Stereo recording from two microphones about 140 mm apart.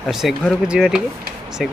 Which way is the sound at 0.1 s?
Centre (ahead or behind).